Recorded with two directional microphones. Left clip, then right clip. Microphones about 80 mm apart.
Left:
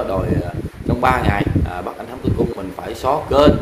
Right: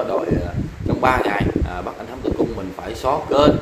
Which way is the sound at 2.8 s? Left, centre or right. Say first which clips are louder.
Left 2 dB; centre.